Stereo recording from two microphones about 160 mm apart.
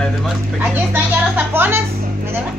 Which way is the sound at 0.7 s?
10° right (ahead or behind).